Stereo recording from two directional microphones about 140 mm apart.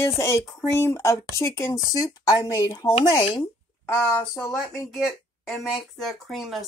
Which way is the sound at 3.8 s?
15° left (ahead or behind).